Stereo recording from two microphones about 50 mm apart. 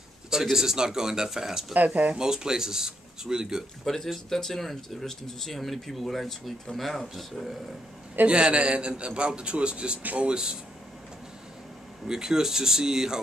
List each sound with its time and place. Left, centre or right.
0.3 s speech: centre
3.8 s speech: centre
8.3 s a man's voice: centre
12.1 s speech: centre